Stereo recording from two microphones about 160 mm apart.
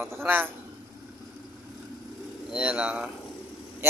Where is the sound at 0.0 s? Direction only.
10° right (ahead or behind).